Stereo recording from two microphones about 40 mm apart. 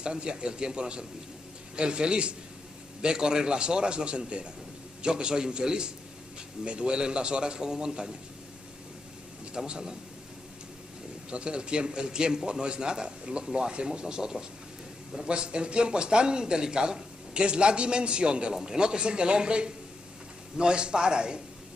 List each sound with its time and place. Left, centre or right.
0.0 s speech: right
9.7 s speech: centre
11.2 s speech: right
18.5 s speech: centre